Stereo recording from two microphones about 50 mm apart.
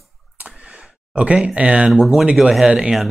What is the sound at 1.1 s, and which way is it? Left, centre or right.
Speech, right.